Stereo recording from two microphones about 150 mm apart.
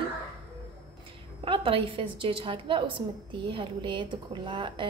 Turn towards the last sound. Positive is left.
turn(degrees=-35)  # may be behind; listen again after turning